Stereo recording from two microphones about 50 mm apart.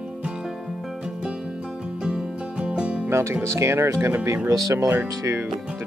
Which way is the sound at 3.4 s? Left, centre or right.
Right.